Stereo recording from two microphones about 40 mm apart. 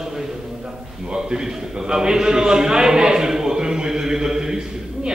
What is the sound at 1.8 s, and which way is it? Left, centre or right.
Speech, centre.